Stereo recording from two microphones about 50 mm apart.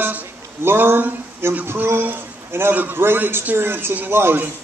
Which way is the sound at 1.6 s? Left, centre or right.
Right.